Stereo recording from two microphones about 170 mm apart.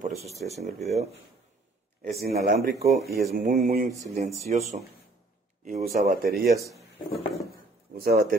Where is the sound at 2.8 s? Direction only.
65° right (ahead or behind).